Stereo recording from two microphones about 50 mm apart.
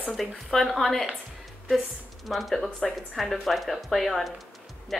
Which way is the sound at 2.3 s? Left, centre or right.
Centre.